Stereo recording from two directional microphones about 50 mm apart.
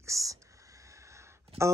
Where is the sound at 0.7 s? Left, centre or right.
Right.